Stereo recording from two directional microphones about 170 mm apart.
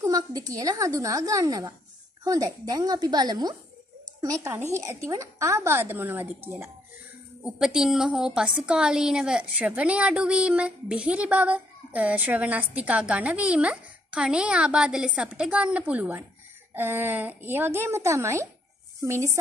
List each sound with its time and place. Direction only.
0.0 s a woman's voice: 20° right (ahead or behind)